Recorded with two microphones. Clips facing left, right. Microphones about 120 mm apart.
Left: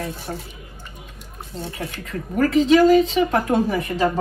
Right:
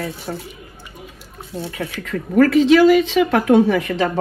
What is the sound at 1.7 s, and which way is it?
A woman's voice, 90° right.